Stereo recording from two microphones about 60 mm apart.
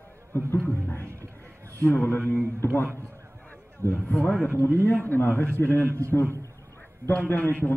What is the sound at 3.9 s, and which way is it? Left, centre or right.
A man's voice, left.